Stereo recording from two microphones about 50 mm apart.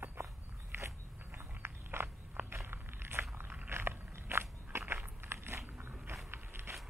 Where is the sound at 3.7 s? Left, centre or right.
Right.